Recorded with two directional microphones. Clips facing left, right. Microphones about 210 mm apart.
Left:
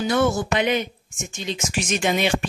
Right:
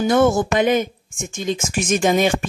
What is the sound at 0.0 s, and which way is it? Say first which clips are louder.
Speech: right 5 dB; 50° right (ahead or behind).